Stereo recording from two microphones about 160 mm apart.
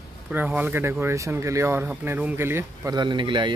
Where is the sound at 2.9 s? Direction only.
30° right (ahead or behind).